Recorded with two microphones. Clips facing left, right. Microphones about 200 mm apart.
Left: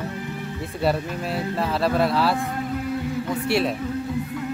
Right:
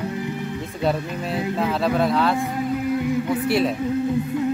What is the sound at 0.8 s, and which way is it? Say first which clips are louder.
Speech: even; 5° left (ahead or behind).